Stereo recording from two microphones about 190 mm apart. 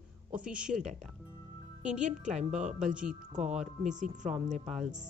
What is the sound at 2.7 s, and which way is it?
Speech, 5° right (ahead or behind).